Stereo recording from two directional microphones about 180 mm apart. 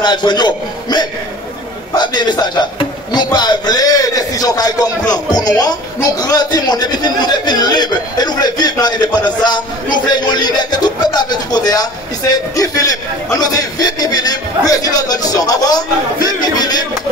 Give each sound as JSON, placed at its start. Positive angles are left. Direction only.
{"t": 0.0, "sound": "a man's voice", "side_deg": 25}